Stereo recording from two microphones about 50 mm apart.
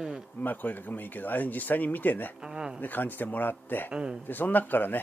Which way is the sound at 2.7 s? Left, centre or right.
Left.